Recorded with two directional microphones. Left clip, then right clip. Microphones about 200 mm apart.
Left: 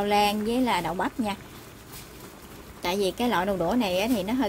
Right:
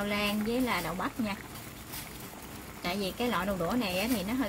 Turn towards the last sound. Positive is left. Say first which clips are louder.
# left 6 dB
turn(degrees=40)  # may be behind; listen again after turning